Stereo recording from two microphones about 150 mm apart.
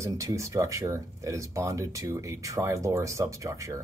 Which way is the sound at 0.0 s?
20° right (ahead or behind).